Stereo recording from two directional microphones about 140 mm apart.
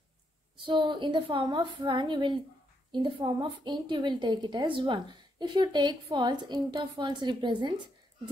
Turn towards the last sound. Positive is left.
turn(degrees=-30)  # may be behind; listen again after turning